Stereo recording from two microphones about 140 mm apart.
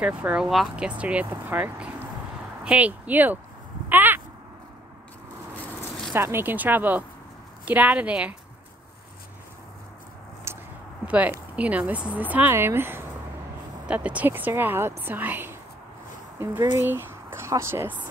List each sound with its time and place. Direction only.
0.0 s speech: 10° right (ahead or behind)
3.9 s a sound: 15° right (ahead or behind)
6.1 s speech: 15° right (ahead or behind)
10.5 s a sound: 20° right (ahead or behind)
11.1 s speech: 10° right (ahead or behind)
16.8 s speech: 15° right (ahead or behind)